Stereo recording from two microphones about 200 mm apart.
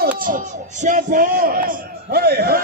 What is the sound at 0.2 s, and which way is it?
A man's voice, 40° right (ahead or behind).